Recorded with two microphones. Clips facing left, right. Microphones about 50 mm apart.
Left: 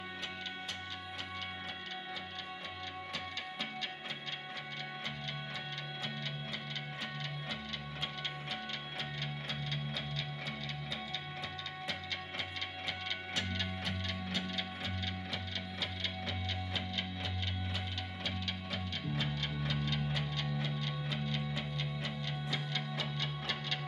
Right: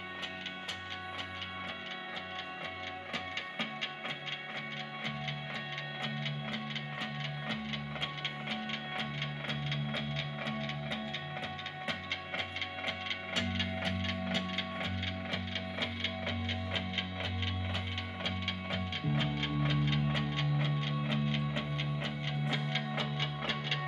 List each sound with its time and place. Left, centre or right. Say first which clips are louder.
9.2 s music: right 3 dB; right
13.5 s music: right 3 dB; right
18.2 s music: right 3 dB; right